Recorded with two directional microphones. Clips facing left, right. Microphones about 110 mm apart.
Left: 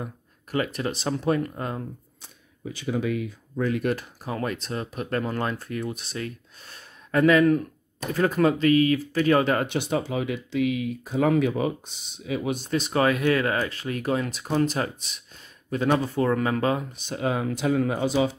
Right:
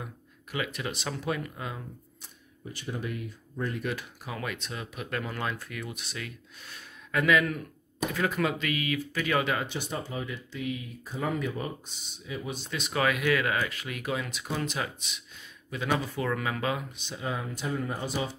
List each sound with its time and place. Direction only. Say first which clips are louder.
0.0 s speech: left 6 dB; 40° left (ahead or behind)
2.7 s speech: left 9 dB; 90° left
3.8 s speech: left 7 dB; 40° left (ahead or behind)
9.6 s speech: left 8 dB; 75° left (ahead or behind)
12.5 s speech: left 4 dB; 40° left (ahead or behind)
17.1 s speech: left 8 dB; 65° left (ahead or behind); by 18.3 s 90° left